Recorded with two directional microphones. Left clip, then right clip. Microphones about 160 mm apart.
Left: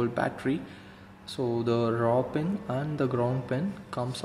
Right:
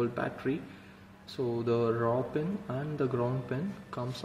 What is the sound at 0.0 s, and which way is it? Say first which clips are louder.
Speech: left 4 dB; 25° left (ahead or behind).